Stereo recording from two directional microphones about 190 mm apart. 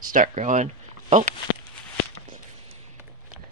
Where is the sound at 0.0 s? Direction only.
45° right (ahead or behind).